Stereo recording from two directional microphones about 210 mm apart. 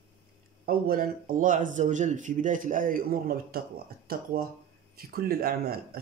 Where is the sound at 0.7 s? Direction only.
45° right (ahead or behind).